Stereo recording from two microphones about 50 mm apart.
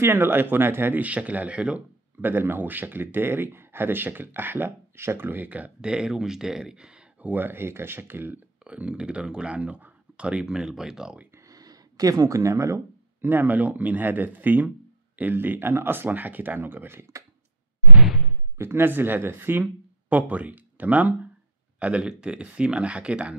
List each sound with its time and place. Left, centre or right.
0.0 s speech: right
1.0 s speech: right
2.2 s speech: right
5.2 s speech: right
5.8 s speech: centre
7.2 s speech: right
8.6 s speech: right
10.4 s speech: centre
12.3 s speech: right
13.2 s speech: right
18.6 s speech: right